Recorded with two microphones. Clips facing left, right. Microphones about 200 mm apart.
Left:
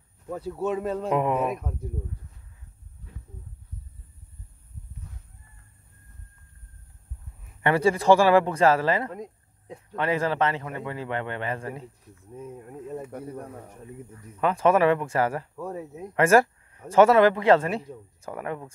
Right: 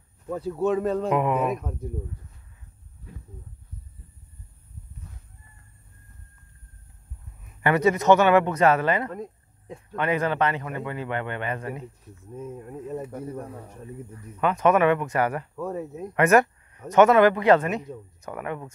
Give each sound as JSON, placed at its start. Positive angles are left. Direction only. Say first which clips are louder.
{"t": 0.4, "sound": "speech", "louder": "right 4 dB", "side_deg": 5}
{"t": 1.1, "sound": "a man's voice", "louder": "left 2 dB", "side_deg": 30}
{"t": 7.6, "sound": "a man's voice", "louder": "right 1 dB", "side_deg": 30}
{"t": 9.1, "sound": "a sound", "louder": "right 2 dB", "side_deg": 15}
{"t": 9.9, "sound": "a man's voice", "louder": "right 1 dB", "side_deg": 30}
{"t": 14.4, "sound": "a man's voice", "louder": "even", "side_deg": 30}
{"t": 15.5, "sound": "speech", "louder": "right 3 dB", "side_deg": 10}
{"t": 16.2, "sound": "a man's voice", "louder": "even", "side_deg": 30}